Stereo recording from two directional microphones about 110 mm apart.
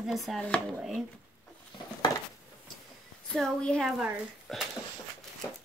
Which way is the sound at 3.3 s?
5° left (ahead or behind).